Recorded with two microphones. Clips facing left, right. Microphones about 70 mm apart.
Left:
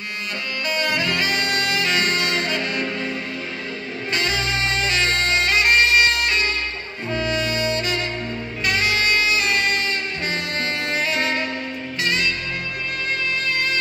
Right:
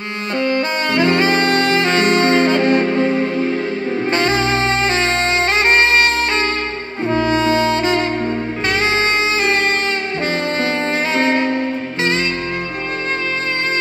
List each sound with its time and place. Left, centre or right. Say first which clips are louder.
0.5 s saxophone: right 4 dB; right
11.1 s music: right 8 dB; right